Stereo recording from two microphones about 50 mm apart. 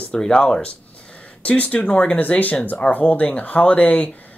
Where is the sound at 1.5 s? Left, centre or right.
Left.